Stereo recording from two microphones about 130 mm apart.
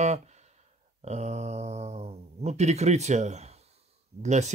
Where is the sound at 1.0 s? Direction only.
60° right (ahead or behind).